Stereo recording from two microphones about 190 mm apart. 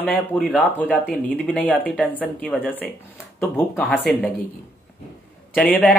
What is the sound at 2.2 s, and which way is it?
Speech, 10° left (ahead or behind).